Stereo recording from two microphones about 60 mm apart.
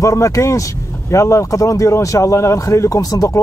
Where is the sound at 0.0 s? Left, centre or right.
Left.